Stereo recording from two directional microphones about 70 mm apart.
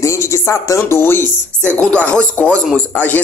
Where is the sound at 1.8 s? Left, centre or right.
Centre.